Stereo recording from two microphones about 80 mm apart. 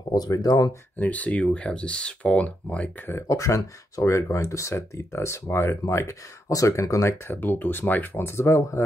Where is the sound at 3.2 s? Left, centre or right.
Left.